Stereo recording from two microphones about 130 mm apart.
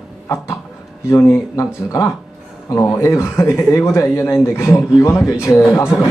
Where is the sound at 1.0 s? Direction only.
25° left (ahead or behind).